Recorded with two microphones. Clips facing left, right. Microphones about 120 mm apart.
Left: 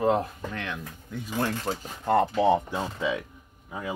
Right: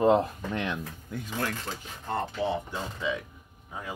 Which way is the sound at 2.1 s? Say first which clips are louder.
Left 8 dB; 85° left.